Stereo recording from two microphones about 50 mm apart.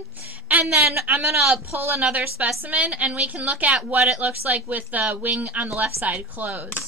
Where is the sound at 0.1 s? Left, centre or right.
Right.